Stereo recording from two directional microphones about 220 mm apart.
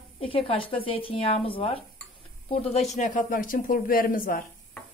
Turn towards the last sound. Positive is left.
turn(degrees=40)  # may be behind; listen again after turning